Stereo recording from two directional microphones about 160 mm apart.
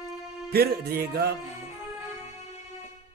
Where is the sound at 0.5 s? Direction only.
75° right (ahead or behind).